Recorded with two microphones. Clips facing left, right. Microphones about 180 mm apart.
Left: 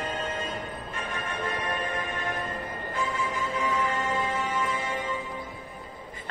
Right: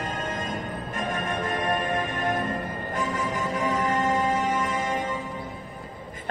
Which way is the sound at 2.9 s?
45° right (ahead or behind).